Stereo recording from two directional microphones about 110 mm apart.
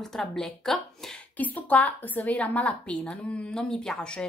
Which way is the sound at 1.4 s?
15° left (ahead or behind).